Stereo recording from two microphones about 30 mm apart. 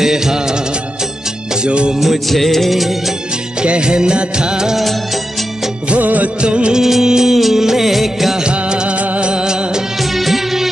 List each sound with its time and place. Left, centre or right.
0.0 s music of bollywood: centre
1.6 s music: right
2.2 s music: centre
3.6 s music of bollywood: right
5.9 s music of bollywood: right
6.4 s music: right
6.8 s music of bollywood: centre
7.1 s music: centre
7.3 s music: centre
8.5 s music of bollywood: right
9.2 s music: right
10.1 s music: centre